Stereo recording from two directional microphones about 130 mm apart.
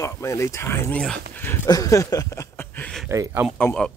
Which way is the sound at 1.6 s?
25° left (ahead or behind).